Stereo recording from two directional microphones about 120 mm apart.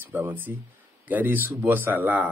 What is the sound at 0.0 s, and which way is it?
Speech, 15° right (ahead or behind).